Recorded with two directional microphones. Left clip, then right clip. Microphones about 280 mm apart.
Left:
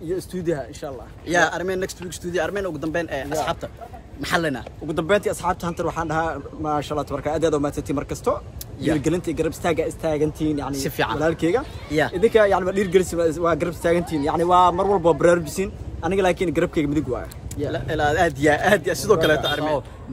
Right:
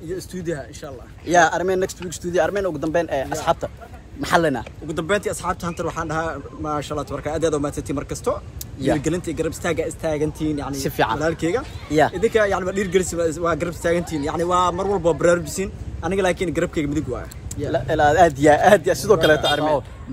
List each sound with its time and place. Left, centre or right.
0.1 s speech: centre
1.2 s speech: centre
4.8 s speech: centre
10.7 s speech: centre
11.1 s speech: centre
11.9 s speech: centre
12.2 s speech: centre
17.6 s speech: centre